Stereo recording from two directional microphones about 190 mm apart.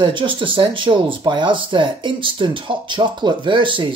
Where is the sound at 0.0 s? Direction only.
25° right (ahead or behind).